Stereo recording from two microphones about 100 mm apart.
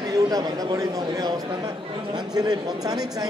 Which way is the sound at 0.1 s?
40° right (ahead or behind).